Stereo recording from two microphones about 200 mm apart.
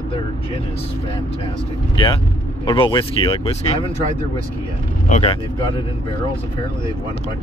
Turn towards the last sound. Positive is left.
turn(degrees=25)  # may be behind; listen again after turning